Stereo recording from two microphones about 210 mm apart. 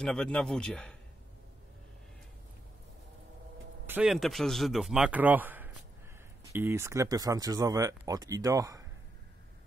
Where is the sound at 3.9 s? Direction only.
5° right (ahead or behind).